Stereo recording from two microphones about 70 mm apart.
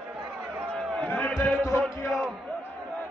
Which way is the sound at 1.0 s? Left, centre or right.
Left.